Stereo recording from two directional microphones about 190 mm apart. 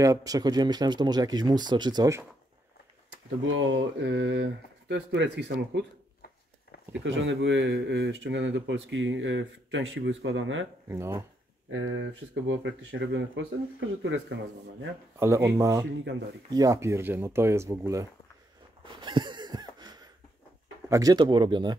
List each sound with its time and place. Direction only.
0.0 s speech: 20° right (ahead or behind)
3.4 s speech: 85° right; by 5.9 s 65° right (ahead or behind)
7.2 s speech: 75° right (ahead or behind)
10.9 s speech: 15° right (ahead or behind)
11.7 s speech: 85° right; by 14.2 s 70° right (ahead or behind)
15.1 s speech: 15° right (ahead or behind)
18.9 s a sound: 25° right (ahead or behind)
20.9 s speech: 20° right (ahead or behind)